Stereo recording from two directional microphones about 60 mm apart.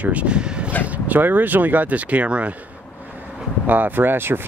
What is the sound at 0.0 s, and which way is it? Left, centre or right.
Speech, right.